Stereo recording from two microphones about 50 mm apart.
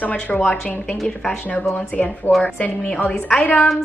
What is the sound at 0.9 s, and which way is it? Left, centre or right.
Speech, centre.